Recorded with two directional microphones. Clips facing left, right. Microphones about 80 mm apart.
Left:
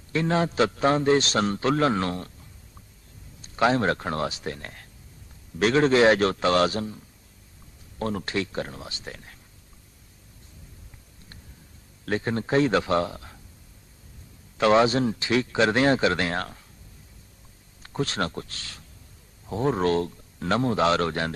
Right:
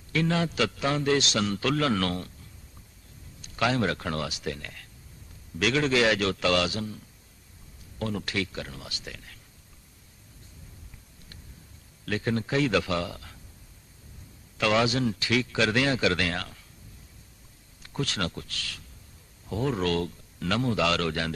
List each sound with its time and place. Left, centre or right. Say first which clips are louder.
0.1 s a man's voice: left 3 dB; left
3.4 s a man's voice: left 4 dB; left
8.0 s a man's voice: left 3 dB; left
12.1 s a man's voice: left 3 dB; left
14.6 s speech: left 5 dB; left
17.8 s a man's voice: left 3 dB; left